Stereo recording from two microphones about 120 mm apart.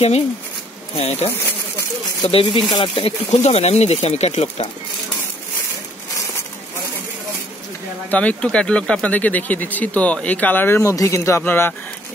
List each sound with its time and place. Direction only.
0.9 s speech: 55° left (ahead or behind)
3.3 s speech: 65° left (ahead or behind)
8.1 s speech: 10° left (ahead or behind)